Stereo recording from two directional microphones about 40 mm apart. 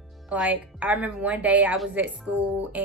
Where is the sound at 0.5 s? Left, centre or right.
Right.